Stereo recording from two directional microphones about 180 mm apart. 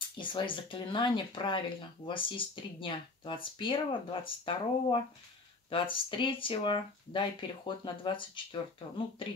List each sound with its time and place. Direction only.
0.2 s speech: 25° left (ahead or behind)